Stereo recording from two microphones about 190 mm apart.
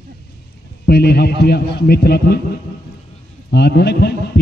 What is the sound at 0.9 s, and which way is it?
A man's voice, 60° left (ahead or behind).